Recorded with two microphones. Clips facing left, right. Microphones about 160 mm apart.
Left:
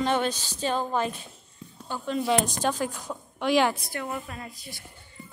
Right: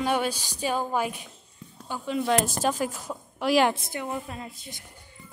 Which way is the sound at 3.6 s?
15° right (ahead or behind).